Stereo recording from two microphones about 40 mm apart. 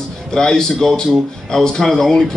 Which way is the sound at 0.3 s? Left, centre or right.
Centre.